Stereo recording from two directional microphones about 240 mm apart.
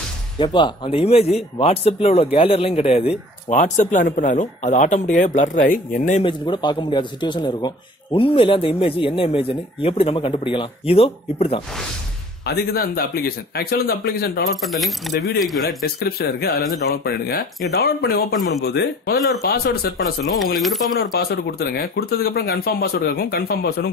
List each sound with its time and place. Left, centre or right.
0.4 s speech: centre
6.2 s speech: centre
12.4 s speech: left
14.6 s speech: centre
15.8 s speech: left